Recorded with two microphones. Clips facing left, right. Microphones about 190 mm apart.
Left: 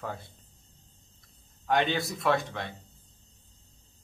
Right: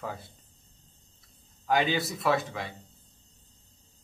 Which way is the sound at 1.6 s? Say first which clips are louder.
Even; centre (ahead or behind).